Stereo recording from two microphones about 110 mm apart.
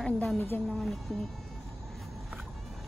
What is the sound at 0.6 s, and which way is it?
Speech, 5° left (ahead or behind).